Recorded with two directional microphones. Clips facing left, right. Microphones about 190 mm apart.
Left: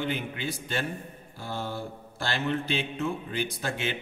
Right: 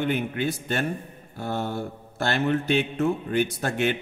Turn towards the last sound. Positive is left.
turn(degrees=-55)  # may be behind; listen again after turning